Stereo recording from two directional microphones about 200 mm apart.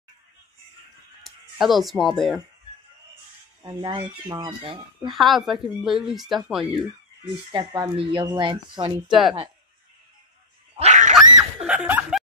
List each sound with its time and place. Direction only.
1.2 s speech: centre (ahead or behind)
3.6 s speech: 20° right (ahead or behind)
5.0 s speech: centre (ahead or behind)
7.2 s speech: 20° right (ahead or behind)
10.8 s dog: 35° right (ahead or behind)
11.1 s snicker: 5° right (ahead or behind)